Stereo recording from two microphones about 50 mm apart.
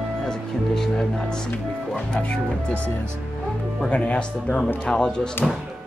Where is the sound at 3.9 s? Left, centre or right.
Left.